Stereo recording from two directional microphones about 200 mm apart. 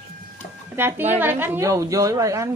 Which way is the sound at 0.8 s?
10° right (ahead or behind).